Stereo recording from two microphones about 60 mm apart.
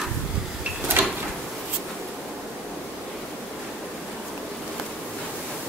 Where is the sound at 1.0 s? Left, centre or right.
Right.